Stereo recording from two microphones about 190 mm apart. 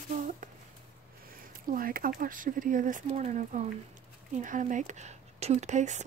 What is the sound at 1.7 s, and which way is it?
Speech, 50° right (ahead or behind).